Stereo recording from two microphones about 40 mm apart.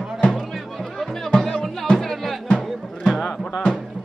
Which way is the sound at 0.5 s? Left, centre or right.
Centre.